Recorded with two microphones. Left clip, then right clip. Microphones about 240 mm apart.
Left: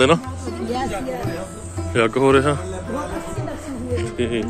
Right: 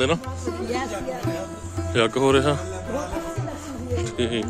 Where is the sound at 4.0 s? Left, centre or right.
Right.